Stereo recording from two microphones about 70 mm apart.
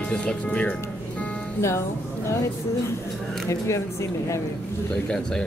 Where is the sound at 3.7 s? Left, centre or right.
Left.